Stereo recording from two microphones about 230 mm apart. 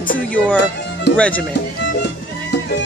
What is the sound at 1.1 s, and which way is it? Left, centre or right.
Speech, left.